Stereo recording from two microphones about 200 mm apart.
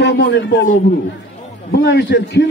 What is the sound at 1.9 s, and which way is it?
Speech, 60° left (ahead or behind).